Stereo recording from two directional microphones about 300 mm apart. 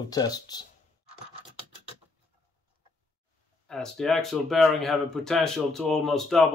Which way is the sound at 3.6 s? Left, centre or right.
Centre.